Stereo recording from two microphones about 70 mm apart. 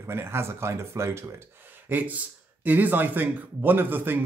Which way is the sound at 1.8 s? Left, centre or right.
Right.